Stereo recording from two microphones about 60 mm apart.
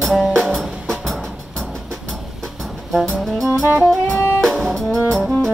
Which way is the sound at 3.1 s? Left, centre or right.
Centre.